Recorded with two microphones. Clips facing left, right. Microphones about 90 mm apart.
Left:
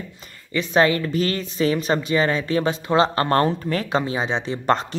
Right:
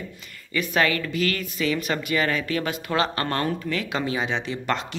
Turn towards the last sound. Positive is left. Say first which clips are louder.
# left 6 dB
turn(degrees=35)  # may be behind; listen again after turning